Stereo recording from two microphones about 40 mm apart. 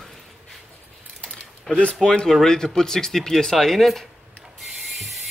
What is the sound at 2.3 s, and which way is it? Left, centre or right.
Speech, centre.